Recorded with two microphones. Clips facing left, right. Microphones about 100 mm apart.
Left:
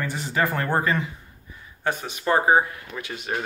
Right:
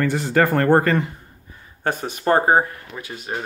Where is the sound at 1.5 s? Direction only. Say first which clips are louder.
Right 2 dB; 40° right (ahead or behind).